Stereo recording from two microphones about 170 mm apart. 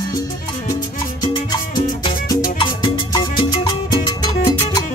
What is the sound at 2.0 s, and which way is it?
Music, 20° left (ahead or behind).